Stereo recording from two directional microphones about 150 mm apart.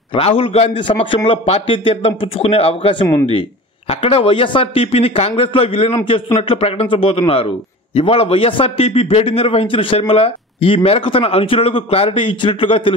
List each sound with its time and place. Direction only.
0.1 s a man's voice: 40° left (ahead or behind)